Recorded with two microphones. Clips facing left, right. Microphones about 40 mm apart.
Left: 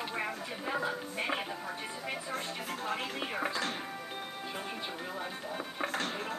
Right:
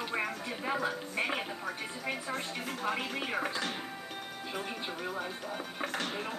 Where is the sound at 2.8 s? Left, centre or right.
Right.